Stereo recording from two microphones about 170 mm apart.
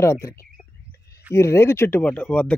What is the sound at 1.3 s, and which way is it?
Speech, 15° left (ahead or behind).